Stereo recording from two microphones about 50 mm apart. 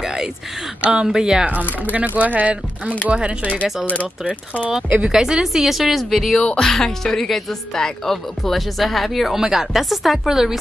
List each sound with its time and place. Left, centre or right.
0.0 s a sound: centre
1.0 s speech: centre
1.4 s speech: right
3.8 s speech: left
4.8 s speech: right
5.1 s speech: centre
9.4 s speech: centre